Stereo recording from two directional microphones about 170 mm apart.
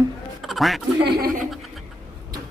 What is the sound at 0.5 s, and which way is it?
Speech, centre (ahead or behind).